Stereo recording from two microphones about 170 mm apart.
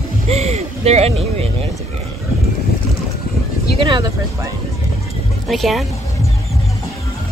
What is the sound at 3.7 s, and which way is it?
Speech, 30° right (ahead or behind).